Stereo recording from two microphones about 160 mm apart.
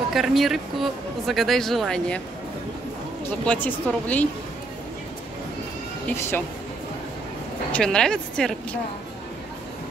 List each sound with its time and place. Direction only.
0.1 s speech: centre (ahead or behind)
3.3 s speech: 10° left (ahead or behind)
6.1 s speech: 15° left (ahead or behind)
7.7 s speech: 5° left (ahead or behind)